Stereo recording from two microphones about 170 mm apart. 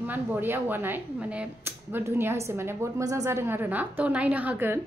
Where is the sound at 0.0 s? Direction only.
10° right (ahead or behind).